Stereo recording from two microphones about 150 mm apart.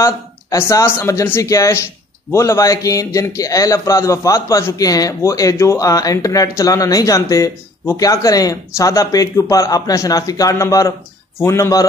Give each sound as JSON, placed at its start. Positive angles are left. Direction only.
{"t": 0.0, "sound": "a man's voice", "side_deg": 20}